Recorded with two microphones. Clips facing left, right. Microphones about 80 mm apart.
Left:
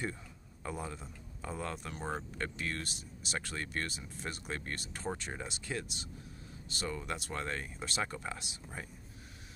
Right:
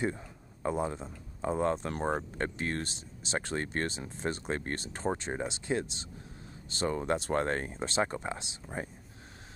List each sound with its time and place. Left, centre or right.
0.0 s speech: right